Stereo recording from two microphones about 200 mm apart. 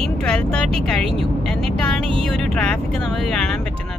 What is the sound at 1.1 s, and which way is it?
Vehicle, 5° left (ahead or behind).